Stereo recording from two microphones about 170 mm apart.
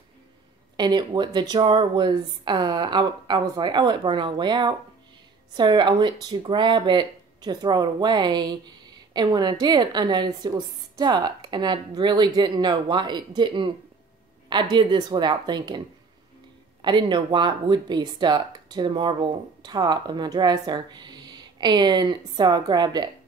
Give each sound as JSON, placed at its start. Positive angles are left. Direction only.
{"t": 0.7, "sound": "speech", "side_deg": -25}
{"t": 16.8, "sound": "speech", "side_deg": -25}